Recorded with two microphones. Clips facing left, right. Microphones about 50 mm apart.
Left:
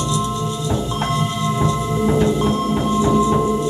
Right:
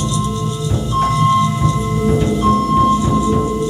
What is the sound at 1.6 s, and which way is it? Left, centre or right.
Music, left.